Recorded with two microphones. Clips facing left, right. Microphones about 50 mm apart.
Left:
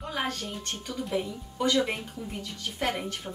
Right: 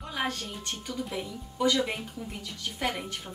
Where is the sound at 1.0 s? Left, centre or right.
Centre.